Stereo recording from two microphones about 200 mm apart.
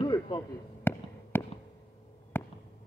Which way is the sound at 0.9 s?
10° left (ahead or behind).